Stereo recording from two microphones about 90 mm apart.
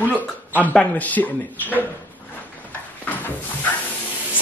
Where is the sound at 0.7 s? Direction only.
15° left (ahead or behind).